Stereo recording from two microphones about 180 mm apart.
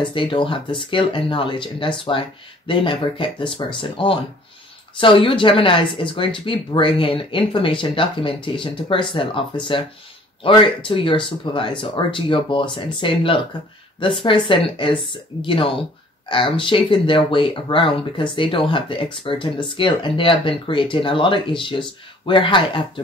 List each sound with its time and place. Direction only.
0.0 s speech: 30° left (ahead or behind)